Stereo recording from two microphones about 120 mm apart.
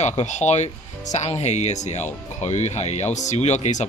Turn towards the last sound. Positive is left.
turn(degrees=75)  # may be behind; listen again after turning